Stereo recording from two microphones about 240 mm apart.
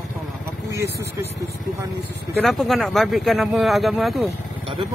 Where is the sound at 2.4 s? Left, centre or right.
Centre.